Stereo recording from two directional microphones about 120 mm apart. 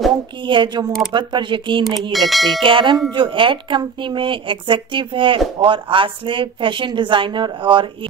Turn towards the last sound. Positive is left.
turn(degrees=-45)  # may be behind; listen again after turning